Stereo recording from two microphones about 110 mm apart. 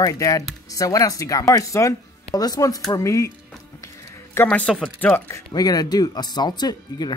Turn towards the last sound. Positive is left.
turn(degrees=40)  # may be behind; listen again after turning